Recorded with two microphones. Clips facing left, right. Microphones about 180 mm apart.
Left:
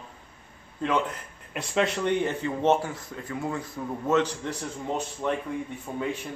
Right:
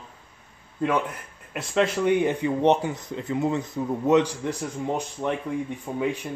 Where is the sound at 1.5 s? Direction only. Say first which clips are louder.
Right 3 dB; centre (ahead or behind).